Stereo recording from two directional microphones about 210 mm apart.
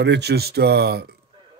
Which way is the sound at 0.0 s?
55° right (ahead or behind).